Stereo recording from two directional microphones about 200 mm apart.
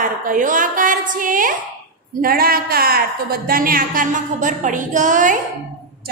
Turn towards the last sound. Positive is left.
turn(degrees=-40)  # may be behind; listen again after turning